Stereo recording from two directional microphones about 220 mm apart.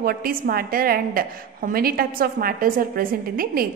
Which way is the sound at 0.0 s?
40° right (ahead or behind).